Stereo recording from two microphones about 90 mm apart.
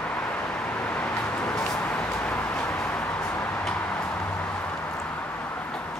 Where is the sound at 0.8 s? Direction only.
15° left (ahead or behind).